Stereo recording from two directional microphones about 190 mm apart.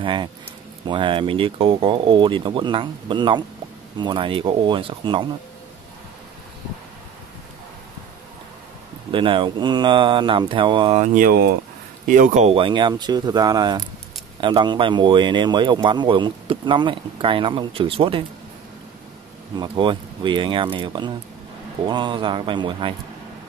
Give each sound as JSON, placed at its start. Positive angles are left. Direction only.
{"t": 0.0, "sound": "speech", "side_deg": -25}
{"t": 9.1, "sound": "speech", "side_deg": -25}
{"t": 11.0, "sound": "speech", "side_deg": -50}
{"t": 19.5, "sound": "speech", "side_deg": -25}